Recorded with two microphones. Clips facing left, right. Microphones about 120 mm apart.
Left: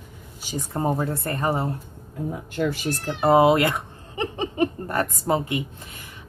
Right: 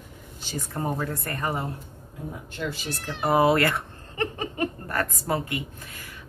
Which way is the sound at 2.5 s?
45° left (ahead or behind).